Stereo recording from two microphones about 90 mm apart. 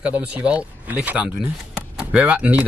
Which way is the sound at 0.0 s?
15° right (ahead or behind).